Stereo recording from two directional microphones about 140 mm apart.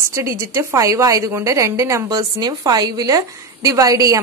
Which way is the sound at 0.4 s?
20° right (ahead or behind).